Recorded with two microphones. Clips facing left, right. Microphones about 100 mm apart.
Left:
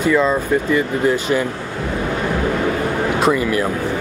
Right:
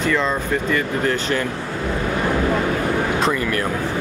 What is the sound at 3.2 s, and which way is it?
Speech, 10° left (ahead or behind).